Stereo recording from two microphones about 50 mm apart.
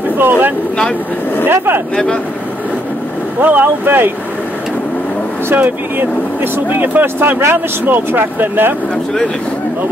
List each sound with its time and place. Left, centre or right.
0.2 s speech: right
3.3 s speech: right
5.5 s speech: right
8.9 s speech: centre